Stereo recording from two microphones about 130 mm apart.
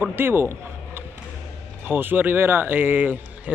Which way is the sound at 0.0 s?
15° right (ahead or behind).